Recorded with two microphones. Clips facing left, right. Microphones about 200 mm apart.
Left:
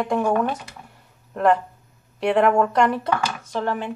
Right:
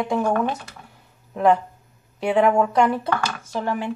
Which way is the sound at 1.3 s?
Centre (ahead or behind).